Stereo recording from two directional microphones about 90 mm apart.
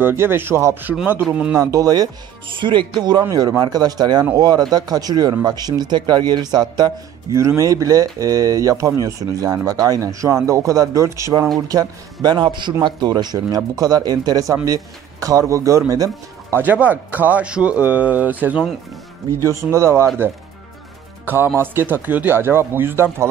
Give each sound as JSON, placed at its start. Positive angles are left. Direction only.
{"t": 0.0, "sound": "a man's voice", "side_deg": -25}
{"t": 2.5, "sound": "speech", "side_deg": -65}
{"t": 7.3, "sound": "a man's voice", "side_deg": -35}
{"t": 16.5, "sound": "speech", "side_deg": -20}
{"t": 19.6, "sound": "a man's voice", "side_deg": -30}
{"t": 21.5, "sound": "speech", "side_deg": -25}